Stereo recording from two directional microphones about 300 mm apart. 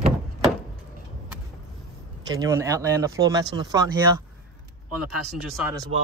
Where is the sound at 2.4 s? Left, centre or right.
Centre.